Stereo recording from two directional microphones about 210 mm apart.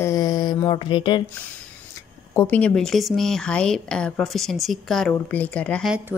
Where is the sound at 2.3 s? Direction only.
10° left (ahead or behind).